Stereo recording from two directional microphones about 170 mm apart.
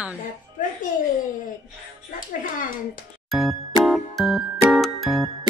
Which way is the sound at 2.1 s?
55° left (ahead or behind).